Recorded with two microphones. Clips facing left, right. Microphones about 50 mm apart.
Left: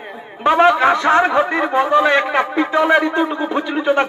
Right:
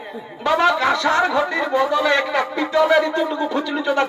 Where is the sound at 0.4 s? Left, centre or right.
Left.